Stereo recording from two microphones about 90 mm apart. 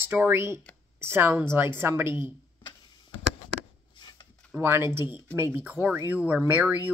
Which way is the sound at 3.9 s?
60° left (ahead or behind).